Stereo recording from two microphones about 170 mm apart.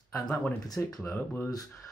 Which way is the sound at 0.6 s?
20° left (ahead or behind).